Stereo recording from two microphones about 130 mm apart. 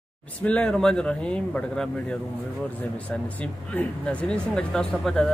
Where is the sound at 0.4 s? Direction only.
10° left (ahead or behind).